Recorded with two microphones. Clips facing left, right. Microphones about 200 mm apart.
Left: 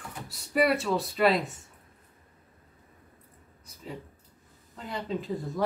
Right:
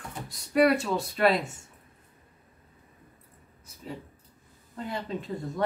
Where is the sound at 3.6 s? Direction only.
Centre (ahead or behind).